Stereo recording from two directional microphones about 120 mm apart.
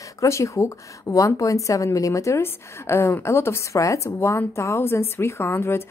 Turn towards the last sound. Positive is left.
turn(degrees=20)  # may be behind; listen again after turning